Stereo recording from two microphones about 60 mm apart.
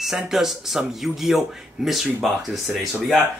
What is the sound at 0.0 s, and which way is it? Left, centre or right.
Speech, centre.